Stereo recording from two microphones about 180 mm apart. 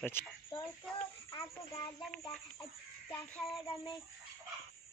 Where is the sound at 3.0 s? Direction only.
5° left (ahead or behind).